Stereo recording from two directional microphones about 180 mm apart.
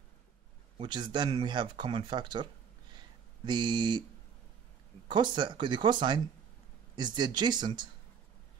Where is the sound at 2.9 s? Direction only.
25° right (ahead or behind).